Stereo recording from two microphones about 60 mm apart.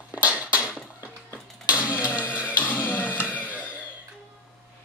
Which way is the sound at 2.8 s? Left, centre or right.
Left.